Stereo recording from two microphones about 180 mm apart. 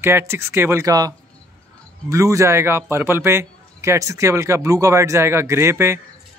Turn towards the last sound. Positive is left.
turn(degrees=-15)  # may be behind; listen again after turning